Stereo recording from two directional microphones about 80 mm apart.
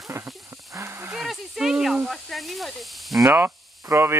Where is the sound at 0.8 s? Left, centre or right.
Right.